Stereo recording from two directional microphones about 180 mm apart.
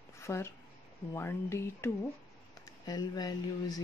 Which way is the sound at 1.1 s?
15° left (ahead or behind).